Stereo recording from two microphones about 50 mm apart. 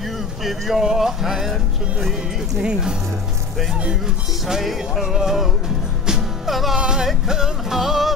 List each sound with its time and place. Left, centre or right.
0.4 s music: centre
0.8 s speech: centre
2.6 s speech: centre
4.5 s music: centre
5.0 s speech: centre
6.0 s music: centre